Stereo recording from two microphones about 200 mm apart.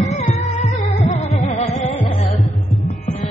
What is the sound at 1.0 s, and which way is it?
Music, 35° left (ahead or behind).